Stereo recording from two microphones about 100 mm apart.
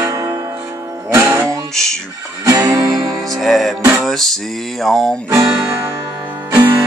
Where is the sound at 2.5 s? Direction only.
35° right (ahead or behind).